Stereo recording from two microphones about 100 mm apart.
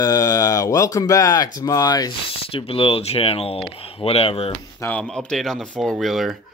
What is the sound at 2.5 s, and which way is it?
Speech, 65° left (ahead or behind).